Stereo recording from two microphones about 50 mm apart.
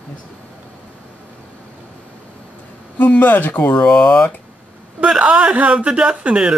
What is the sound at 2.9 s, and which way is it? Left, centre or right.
Speech, left.